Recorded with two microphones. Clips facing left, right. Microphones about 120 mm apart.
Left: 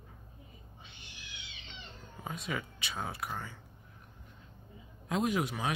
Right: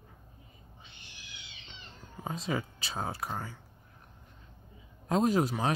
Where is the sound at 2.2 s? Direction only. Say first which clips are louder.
Right 4 dB; 30° right (ahead or behind).